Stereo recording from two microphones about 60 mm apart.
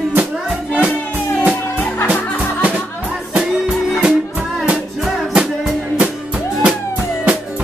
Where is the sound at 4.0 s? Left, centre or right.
Centre.